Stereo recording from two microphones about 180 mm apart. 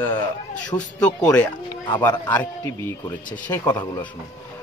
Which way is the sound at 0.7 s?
5° left (ahead or behind).